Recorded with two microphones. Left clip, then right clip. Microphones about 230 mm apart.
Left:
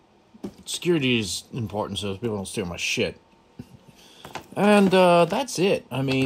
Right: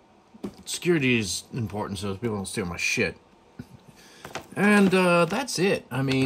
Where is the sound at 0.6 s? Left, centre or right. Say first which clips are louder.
Left 1 dB; centre.